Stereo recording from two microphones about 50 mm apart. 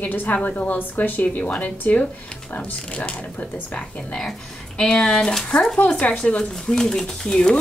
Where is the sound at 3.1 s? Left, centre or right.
Left.